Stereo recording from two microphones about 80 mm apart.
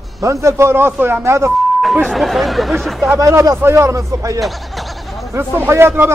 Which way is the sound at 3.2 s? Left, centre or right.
Right.